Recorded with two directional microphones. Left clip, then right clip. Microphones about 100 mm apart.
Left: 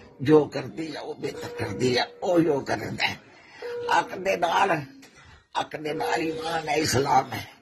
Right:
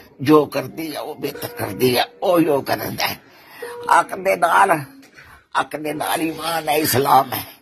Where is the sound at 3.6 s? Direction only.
15° right (ahead or behind).